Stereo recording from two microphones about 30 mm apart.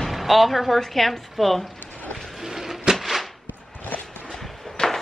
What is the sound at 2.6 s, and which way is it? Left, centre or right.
Cupboard open or close, centre.